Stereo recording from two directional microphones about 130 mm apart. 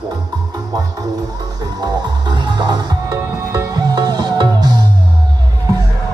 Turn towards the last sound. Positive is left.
turn(degrees=-30)  # may be behind; listen again after turning